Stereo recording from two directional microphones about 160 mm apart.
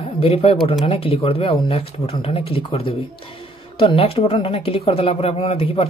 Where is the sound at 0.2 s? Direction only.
35° left (ahead or behind).